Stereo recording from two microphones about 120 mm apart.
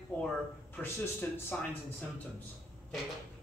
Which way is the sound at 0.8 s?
20° left (ahead or behind).